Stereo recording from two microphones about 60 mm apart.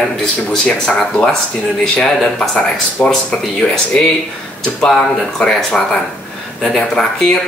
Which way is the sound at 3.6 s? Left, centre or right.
Centre.